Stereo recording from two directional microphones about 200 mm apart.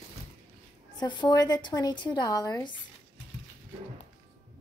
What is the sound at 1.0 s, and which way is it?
Speech, 20° left (ahead or behind).